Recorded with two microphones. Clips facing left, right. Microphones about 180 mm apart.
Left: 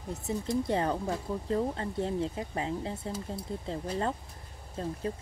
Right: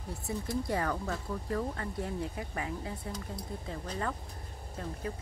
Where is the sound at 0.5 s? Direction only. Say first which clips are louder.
Left 4 dB; 25° left (ahead or behind).